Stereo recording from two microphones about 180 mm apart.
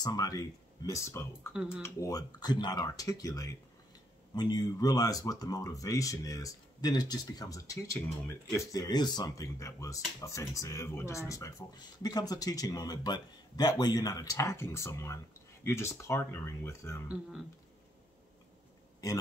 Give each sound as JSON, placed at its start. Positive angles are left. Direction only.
{"t": 0.0, "sound": "speech", "side_deg": 20}
{"t": 1.5, "sound": "speech", "side_deg": -5}
{"t": 1.8, "sound": "speech", "side_deg": 20}